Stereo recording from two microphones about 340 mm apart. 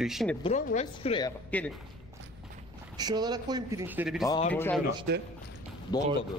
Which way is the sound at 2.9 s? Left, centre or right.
Centre.